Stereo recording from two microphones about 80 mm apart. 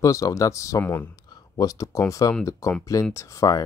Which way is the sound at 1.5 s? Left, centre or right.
Left.